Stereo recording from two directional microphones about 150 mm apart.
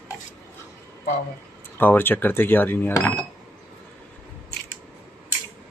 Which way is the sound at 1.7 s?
15° left (ahead or behind).